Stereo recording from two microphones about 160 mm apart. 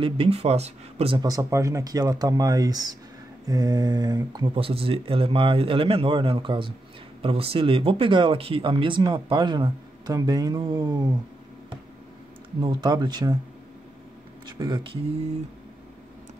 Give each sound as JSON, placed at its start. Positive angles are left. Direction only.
{"t": 0.0, "sound": "speech", "side_deg": -35}
{"t": 1.2, "sound": "speech", "side_deg": -20}
{"t": 12.5, "sound": "speech", "side_deg": -25}
{"t": 14.6, "sound": "speech", "side_deg": -30}